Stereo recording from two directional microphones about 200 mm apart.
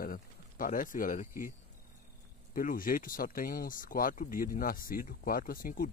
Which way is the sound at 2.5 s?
45° left (ahead or behind).